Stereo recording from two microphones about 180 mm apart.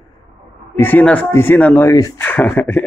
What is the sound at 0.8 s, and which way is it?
Speech, 10° left (ahead or behind).